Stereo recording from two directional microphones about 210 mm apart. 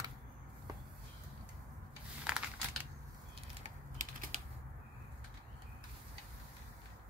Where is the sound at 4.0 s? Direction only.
35° right (ahead or behind).